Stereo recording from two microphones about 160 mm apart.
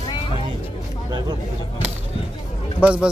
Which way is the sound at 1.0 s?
25° right (ahead or behind).